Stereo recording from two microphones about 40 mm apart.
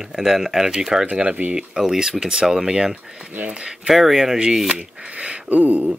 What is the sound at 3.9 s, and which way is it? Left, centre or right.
Speech, centre.